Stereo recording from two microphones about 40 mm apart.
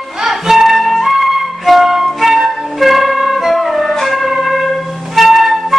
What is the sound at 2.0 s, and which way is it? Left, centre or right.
Flute, centre.